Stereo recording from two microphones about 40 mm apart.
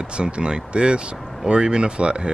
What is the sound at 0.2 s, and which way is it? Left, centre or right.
Speech, right.